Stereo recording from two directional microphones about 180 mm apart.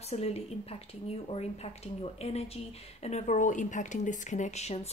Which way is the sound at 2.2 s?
35° left (ahead or behind).